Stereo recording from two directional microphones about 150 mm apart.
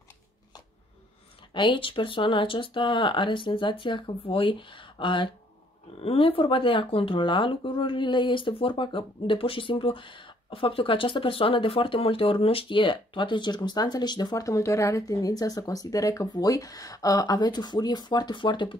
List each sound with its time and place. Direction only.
1.5 s speech: 35° left (ahead or behind)